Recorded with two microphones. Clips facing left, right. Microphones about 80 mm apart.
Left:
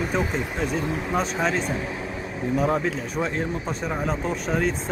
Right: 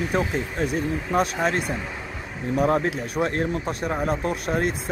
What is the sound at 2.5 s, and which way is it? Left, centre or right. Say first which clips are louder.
Speech: right 2 dB; right.